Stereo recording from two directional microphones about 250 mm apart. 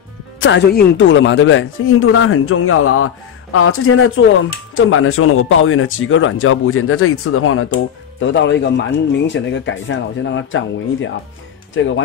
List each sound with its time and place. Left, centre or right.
0.4 s speech: left